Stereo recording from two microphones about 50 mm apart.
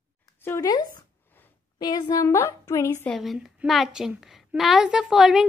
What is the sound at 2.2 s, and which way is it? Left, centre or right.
Speech, left.